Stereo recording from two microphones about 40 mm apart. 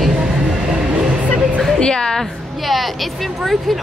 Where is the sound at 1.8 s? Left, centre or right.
Centre.